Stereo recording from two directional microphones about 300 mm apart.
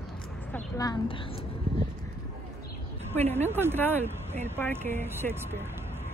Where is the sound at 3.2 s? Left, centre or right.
Right.